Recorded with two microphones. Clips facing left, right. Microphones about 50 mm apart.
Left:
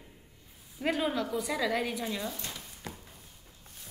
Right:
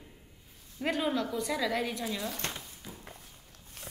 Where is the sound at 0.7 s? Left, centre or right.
Centre.